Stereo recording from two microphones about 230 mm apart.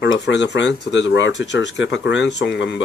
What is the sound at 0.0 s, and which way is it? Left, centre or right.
Speech, left.